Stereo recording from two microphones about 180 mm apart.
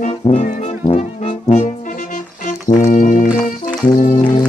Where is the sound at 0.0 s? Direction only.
45° left (ahead or behind).